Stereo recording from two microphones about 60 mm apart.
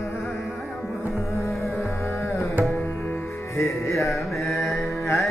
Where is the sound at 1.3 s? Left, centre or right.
Left.